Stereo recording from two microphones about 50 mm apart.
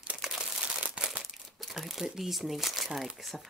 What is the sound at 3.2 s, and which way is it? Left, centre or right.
Speech, centre.